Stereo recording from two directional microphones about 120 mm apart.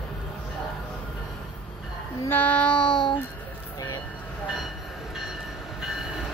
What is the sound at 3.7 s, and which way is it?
Vehicle, 35° left (ahead or behind).